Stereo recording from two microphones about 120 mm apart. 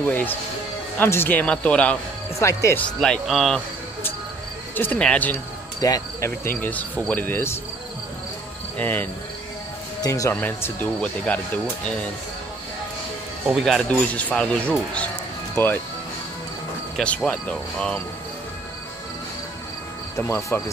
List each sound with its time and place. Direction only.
0.0 s speech: 15° left (ahead or behind)
2.3 s speech: 25° left (ahead or behind)
2.8 s speech: 5° left (ahead or behind)
4.7 s speech: 10° left (ahead or behind)
5.8 s cricket: 30° left (ahead or behind)
6.4 s speech: 15° left (ahead or behind)
8.7 s speech: 15° left (ahead or behind)
10.0 s speech: 30° left (ahead or behind)
10.3 s speech: 15° left (ahead or behind)
13.5 s speech: 5° right (ahead or behind)
13.8 s speech: 10° left (ahead or behind)
16.9 s speech: 5° left (ahead or behind)
20.2 s speech: 20° left (ahead or behind)